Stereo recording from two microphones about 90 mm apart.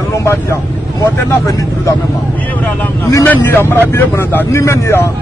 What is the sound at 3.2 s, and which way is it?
Speech, 20° left (ahead or behind).